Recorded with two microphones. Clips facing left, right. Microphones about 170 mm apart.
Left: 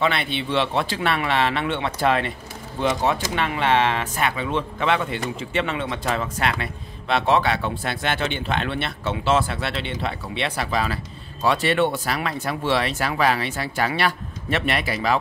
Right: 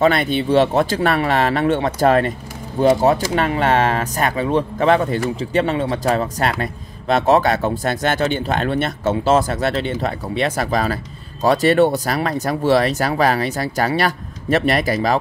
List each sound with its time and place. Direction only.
0.0 s speech: 45° right (ahead or behind)